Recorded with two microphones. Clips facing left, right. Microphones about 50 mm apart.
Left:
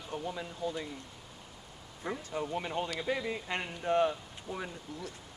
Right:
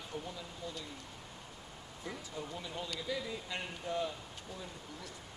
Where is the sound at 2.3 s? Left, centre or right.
Left.